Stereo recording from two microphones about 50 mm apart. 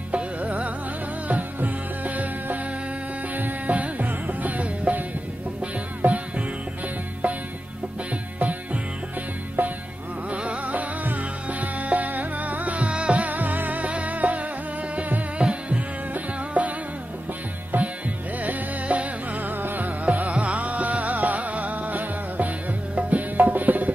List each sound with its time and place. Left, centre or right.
0.1 s music: right
8.4 s music: right
10.3 s music: right
17.7 s music: right